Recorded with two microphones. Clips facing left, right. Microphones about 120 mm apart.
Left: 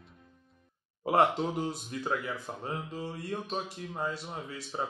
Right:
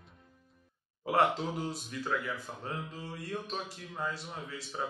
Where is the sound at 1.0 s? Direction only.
20° left (ahead or behind).